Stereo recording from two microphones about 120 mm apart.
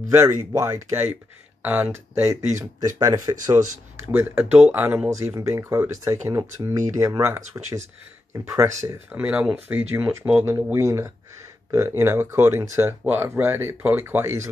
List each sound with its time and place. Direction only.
0.1 s speech: 20° right (ahead or behind)
4.1 s speech: 15° right (ahead or behind)
5.1 s speech: 25° right (ahead or behind)
9.2 s speech: 10° right (ahead or behind)
10.4 s speech: 25° right (ahead or behind)